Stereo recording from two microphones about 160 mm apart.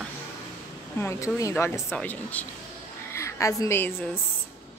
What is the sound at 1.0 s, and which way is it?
A woman's voice, 15° left (ahead or behind).